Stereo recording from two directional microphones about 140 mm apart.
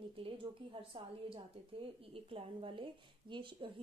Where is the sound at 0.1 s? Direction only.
40° right (ahead or behind).